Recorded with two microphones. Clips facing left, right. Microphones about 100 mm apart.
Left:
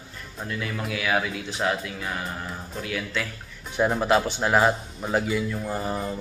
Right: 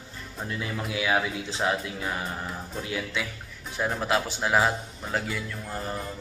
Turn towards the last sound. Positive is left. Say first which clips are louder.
# left 5 dB
turn(degrees=5)  # may be behind; listen again after turning